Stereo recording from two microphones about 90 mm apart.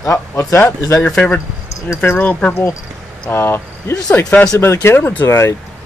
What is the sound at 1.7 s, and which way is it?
Speech, 30° left (ahead or behind).